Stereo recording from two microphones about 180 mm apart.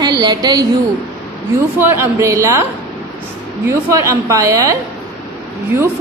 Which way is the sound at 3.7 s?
15° right (ahead or behind).